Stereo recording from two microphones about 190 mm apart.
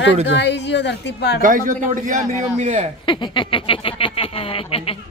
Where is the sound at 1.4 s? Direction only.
45° right (ahead or behind).